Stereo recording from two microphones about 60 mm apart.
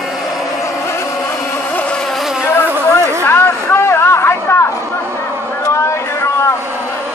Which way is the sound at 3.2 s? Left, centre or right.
Left.